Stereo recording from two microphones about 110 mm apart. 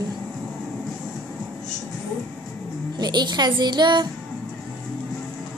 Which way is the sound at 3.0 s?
40° right (ahead or behind).